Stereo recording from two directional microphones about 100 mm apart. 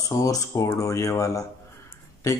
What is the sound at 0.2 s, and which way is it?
Speech, 35° left (ahead or behind).